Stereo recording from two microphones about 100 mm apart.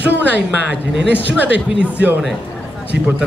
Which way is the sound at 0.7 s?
15° right (ahead or behind).